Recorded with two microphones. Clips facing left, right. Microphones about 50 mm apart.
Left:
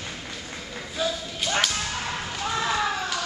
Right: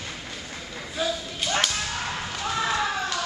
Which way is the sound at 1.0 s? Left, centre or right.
Centre.